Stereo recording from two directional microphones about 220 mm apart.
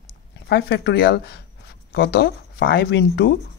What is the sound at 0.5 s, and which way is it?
Speech, 50° left (ahead or behind).